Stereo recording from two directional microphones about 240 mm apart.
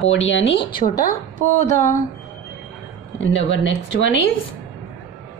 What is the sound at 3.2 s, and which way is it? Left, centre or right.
A woman's voice, left.